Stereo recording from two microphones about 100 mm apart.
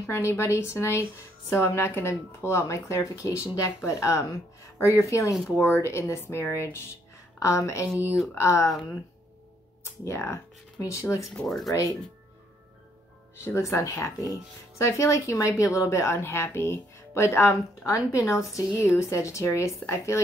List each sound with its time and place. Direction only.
0.0 s speech: 25° left (ahead or behind)
10.0 s speech: 30° left (ahead or behind)
11.4 s speech: centre (ahead or behind)
13.4 s speech: 25° left (ahead or behind)